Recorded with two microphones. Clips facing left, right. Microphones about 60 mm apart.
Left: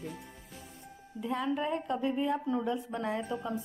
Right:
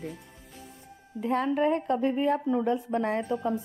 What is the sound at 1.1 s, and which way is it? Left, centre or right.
A woman's voice, right.